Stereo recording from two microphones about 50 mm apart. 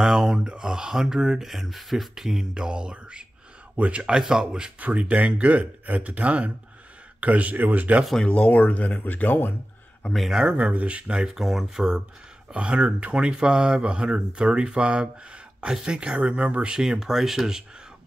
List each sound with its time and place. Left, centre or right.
0.0 s speech: centre
3.7 s speech: right
4.7 s speech: right
8.2 s speech: left
10.3 s speech: centre
11.2 s speech: centre
12.5 s speech: centre
16.7 s speech: centre